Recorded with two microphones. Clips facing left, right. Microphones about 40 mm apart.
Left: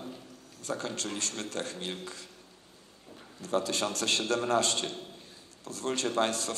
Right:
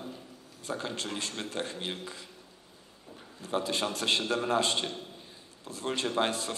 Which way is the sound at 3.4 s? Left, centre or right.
Right.